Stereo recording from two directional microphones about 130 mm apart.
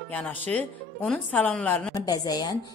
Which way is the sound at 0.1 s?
10° left (ahead or behind).